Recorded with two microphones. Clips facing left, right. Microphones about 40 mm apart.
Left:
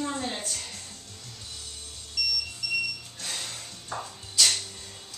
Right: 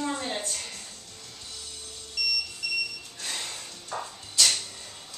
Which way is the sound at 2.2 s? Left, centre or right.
Centre.